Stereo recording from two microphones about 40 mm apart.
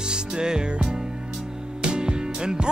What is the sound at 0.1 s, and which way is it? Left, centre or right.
Music, centre.